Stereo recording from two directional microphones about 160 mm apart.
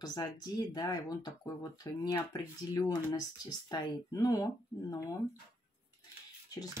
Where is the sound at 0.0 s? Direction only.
25° left (ahead or behind).